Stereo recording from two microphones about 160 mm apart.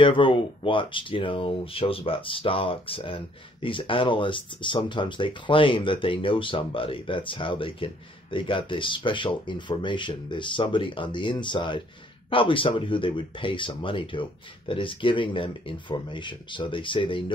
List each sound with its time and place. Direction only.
0.0 s speech: 30° left (ahead or behind)